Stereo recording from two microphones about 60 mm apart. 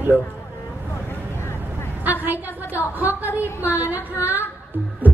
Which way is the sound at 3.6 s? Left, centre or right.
Right.